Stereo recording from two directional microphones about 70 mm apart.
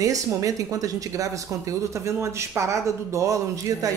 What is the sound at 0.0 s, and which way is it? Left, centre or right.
A woman's voice, right.